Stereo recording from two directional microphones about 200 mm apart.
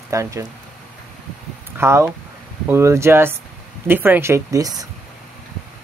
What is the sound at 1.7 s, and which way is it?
Speech, 10° right (ahead or behind).